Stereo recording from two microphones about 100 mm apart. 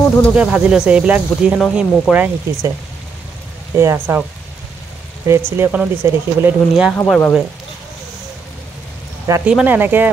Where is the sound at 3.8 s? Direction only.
25° right (ahead or behind).